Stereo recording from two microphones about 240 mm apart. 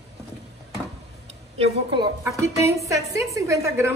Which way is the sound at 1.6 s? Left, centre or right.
Centre.